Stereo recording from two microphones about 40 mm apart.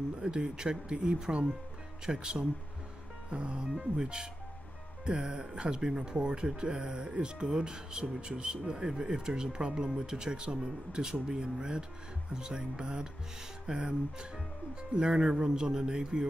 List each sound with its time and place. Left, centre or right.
0.2 s speech: right
3.3 s speech: right